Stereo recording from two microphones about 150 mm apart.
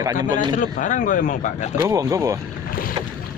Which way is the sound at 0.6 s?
60° left (ahead or behind).